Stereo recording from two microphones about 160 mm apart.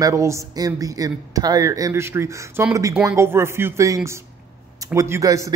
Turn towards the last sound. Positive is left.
turn(degrees=-20)  # may be behind; listen again after turning